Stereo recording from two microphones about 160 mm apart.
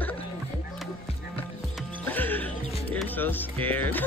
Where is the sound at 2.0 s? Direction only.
10° left (ahead or behind).